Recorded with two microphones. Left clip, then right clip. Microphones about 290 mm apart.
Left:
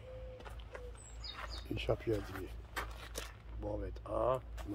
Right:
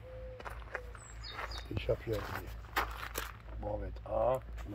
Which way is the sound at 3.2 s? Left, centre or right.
Centre.